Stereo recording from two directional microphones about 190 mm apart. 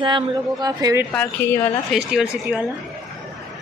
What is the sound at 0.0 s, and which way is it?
Speech, 20° right (ahead or behind).